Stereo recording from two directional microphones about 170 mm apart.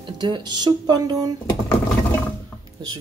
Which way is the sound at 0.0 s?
25° right (ahead or behind).